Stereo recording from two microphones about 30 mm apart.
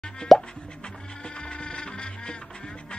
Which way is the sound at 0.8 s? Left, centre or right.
Left.